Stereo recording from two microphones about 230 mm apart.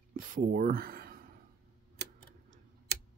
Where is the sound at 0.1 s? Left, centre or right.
Right.